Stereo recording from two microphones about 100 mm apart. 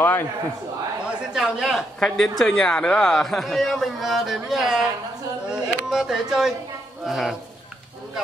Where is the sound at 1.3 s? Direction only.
5° right (ahead or behind).